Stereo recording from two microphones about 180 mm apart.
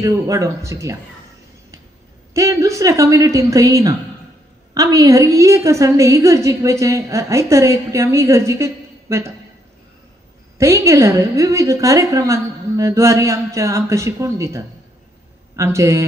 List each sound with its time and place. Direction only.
0.0 s a woman's voice: 15° right (ahead or behind)
2.3 s a woman's voice: 15° right (ahead or behind)
10.6 s a woman's voice: 15° right (ahead or behind)